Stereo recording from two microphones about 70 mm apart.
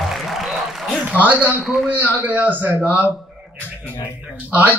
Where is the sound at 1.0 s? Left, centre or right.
Right.